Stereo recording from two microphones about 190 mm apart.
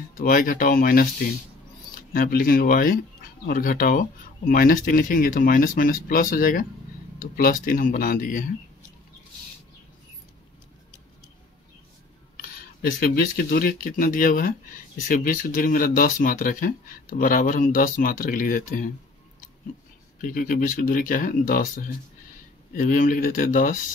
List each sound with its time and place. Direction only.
0.2 s speech: 45° left (ahead or behind)
2.1 s speech: 50° left (ahead or behind)
12.4 s speech: 50° left (ahead or behind)
20.2 s speech: 45° left (ahead or behind)